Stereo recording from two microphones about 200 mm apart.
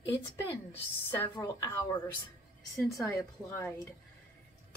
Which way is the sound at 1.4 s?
20° left (ahead or behind).